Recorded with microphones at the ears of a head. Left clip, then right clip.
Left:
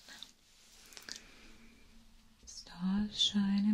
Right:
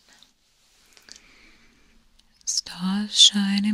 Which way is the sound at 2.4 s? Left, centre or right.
Right.